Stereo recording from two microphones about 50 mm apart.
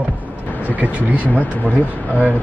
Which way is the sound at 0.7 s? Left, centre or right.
Right.